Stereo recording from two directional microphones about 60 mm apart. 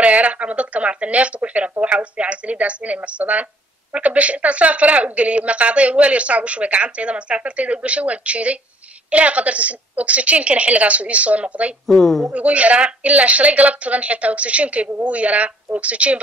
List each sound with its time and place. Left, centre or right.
0.0 s speech: right
11.8 s a woman's voice: centre
12.3 s speech: right